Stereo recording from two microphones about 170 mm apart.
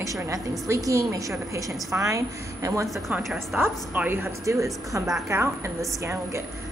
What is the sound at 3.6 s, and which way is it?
A woman's voice, 10° right (ahead or behind).